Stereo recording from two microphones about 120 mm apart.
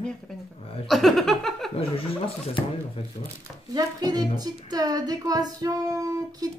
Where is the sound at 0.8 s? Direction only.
Centre (ahead or behind).